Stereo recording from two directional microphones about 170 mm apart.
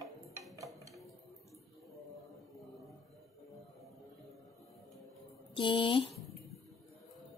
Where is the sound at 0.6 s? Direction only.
20° right (ahead or behind).